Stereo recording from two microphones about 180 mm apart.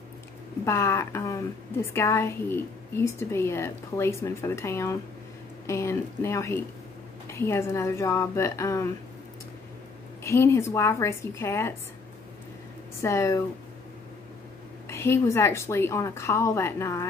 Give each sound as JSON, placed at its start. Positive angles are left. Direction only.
{"t": 0.7, "sound": "a woman's voice", "side_deg": 15}
{"t": 10.2, "sound": "a woman's voice", "side_deg": 15}
{"t": 13.0, "sound": "a woman's voice", "side_deg": 15}
{"t": 14.9, "sound": "a woman's voice", "side_deg": 15}